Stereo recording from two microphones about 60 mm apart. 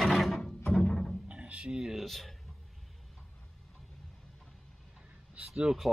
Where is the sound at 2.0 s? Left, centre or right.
Centre.